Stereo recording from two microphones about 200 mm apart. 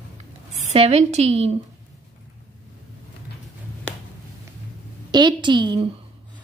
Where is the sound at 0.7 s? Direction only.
30° right (ahead or behind).